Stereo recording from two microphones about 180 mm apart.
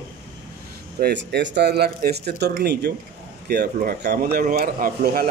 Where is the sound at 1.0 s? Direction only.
70° right (ahead or behind).